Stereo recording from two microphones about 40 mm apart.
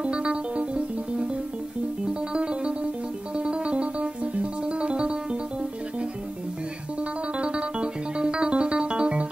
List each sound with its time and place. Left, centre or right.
0.0 s music: right
2.3 s music: right